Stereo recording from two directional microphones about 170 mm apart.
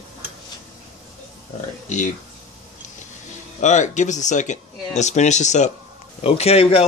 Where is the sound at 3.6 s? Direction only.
45° left (ahead or behind).